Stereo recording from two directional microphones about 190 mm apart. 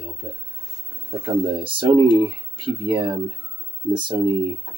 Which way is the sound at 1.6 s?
25° right (ahead or behind).